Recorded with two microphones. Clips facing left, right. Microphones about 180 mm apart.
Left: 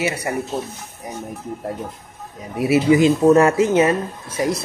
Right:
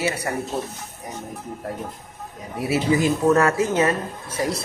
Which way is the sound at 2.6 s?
20° left (ahead or behind).